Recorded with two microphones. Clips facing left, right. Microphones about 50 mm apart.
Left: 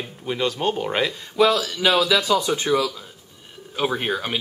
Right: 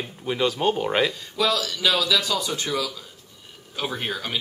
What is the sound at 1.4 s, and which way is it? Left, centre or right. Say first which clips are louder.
Speech: left 5 dB; left.